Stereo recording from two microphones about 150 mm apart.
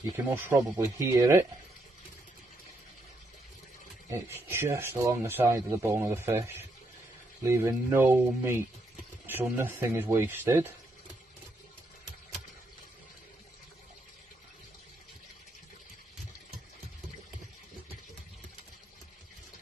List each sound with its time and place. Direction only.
0.0 s speech: 15° right (ahead or behind)
4.1 s speech: 15° right (ahead or behind)